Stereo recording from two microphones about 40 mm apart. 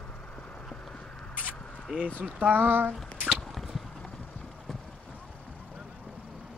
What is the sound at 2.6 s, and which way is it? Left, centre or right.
Speech, right.